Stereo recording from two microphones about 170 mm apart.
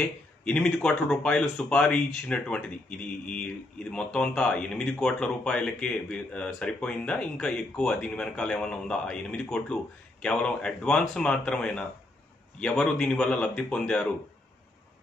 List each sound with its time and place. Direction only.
0.0 s speech: 5° left (ahead or behind)